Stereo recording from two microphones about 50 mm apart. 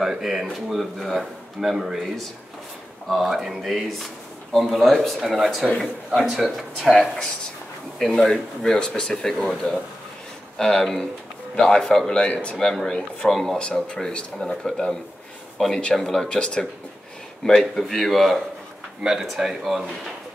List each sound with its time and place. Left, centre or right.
0.0 s speech: centre
6.3 s speech: centre
8.0 s speech: centre
12.3 s speech: left
12.5 s speech: centre
15.9 s speech: centre
16.3 s speech: centre
17.5 s speech: centre